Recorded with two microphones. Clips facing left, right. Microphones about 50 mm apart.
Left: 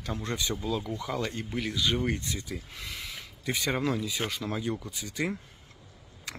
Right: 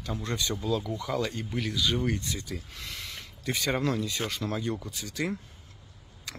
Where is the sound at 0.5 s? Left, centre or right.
Centre.